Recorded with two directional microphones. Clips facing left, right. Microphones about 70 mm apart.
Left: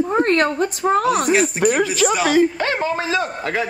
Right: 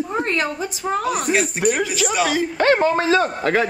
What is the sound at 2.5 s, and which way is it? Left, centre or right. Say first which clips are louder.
Speech: right 5 dB; right.